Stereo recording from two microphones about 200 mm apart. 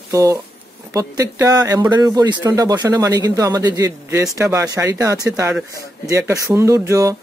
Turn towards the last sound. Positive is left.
turn(degrees=-15)  # may be behind; listen again after turning